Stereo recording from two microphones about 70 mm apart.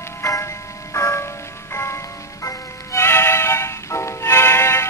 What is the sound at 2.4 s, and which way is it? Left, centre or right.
Music, left.